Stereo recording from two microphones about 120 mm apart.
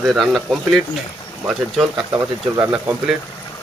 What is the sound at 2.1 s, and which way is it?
Speech, 20° right (ahead or behind).